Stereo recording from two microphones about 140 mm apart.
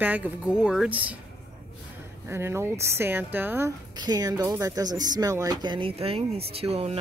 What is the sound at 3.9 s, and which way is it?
A woman's voice, 30° right (ahead or behind).